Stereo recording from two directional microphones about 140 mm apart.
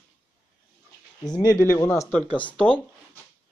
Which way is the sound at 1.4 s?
20° left (ahead or behind).